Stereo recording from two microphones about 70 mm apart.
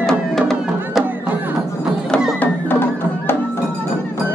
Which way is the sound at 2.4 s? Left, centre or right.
Left.